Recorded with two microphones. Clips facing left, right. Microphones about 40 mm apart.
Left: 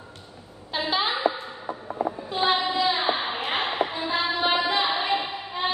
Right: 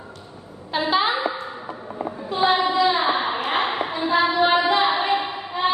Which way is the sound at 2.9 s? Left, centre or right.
Right.